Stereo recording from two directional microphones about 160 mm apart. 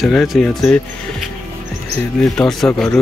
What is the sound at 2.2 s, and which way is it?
Speech, 5° left (ahead or behind).